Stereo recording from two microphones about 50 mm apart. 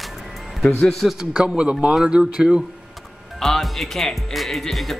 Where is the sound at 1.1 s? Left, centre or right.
Centre.